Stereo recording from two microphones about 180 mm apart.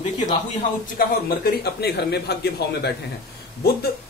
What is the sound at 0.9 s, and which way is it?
Speech, 60° left (ahead or behind).